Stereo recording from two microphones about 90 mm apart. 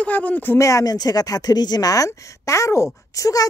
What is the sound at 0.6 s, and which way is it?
Speech, 40° left (ahead or behind).